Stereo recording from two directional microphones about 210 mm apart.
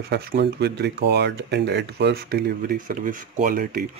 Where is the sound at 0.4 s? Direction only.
50° right (ahead or behind).